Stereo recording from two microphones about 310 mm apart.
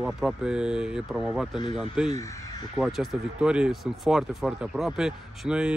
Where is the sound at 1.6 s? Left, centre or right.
Centre.